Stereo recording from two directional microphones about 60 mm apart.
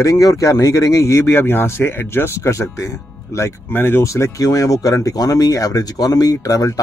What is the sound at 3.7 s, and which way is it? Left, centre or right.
Speech, left.